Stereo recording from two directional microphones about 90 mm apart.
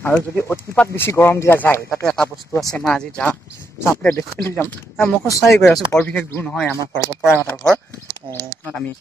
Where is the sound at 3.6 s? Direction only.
30° left (ahead or behind).